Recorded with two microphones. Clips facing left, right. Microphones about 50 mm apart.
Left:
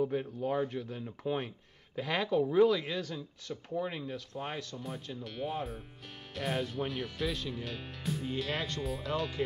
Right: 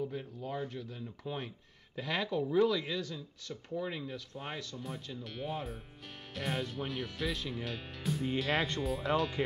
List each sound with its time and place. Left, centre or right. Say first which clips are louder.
0.0 s a man's voice: left 7 dB; left
1.0 s speech: left 6 dB; left
2.0 s speech: left 4 dB; centre
4.0 s speech: left 3 dB; centre
9.1 s speech: right 3 dB; right